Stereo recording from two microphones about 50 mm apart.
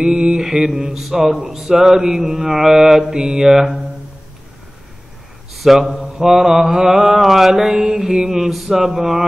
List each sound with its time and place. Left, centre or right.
0.1 s mantra: centre
0.4 s mantra: centre
5.5 s a man's voice: centre
6.1 s mantra: centre